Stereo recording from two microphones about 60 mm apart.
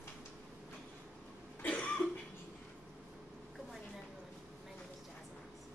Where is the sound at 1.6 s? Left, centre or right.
Left.